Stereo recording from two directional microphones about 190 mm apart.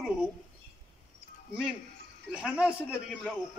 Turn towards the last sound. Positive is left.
turn(degrees=-5)  # may be behind; listen again after turning